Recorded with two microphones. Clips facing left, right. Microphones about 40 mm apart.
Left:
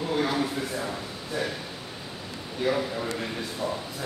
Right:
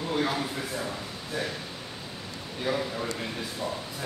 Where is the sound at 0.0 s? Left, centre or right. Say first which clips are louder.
Left 2 dB; centre.